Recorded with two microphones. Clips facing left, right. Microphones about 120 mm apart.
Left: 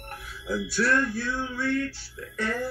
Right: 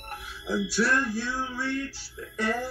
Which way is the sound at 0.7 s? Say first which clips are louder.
Left 3 dB; 10° right (ahead or behind).